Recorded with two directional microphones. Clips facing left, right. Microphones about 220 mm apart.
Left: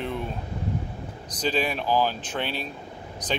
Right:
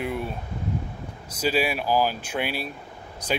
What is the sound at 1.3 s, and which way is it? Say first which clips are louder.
Speech: right 2 dB; 10° right (ahead or behind).